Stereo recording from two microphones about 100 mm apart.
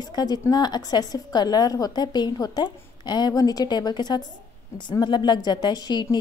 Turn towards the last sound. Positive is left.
turn(degrees=45)  # may be behind; listen again after turning